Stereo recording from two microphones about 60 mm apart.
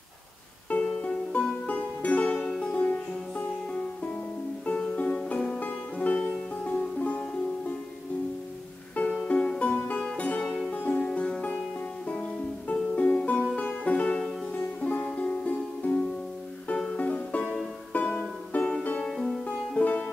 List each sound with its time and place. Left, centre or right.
0.7 s music: left
2.4 s music: centre
2.7 s music: left
9.0 s music: left
17.0 s music: left
19.0 s music: centre
19.4 s music: left